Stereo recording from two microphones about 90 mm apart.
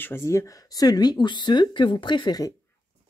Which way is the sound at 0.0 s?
30° left (ahead or behind).